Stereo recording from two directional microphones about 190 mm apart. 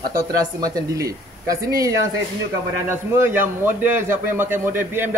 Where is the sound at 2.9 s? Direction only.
15° right (ahead or behind).